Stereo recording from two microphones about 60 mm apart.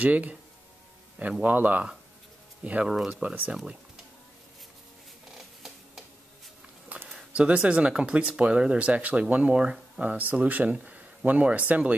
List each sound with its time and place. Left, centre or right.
0.0 s speech: right
1.4 s speech: right
7.1 s speech: centre